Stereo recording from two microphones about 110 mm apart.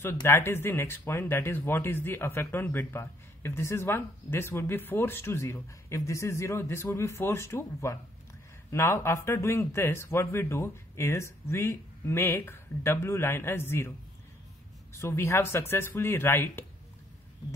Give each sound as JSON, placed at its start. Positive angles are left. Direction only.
{"t": 0.0, "sound": "speech", "side_deg": 20}
{"t": 15.0, "sound": "speech", "side_deg": 25}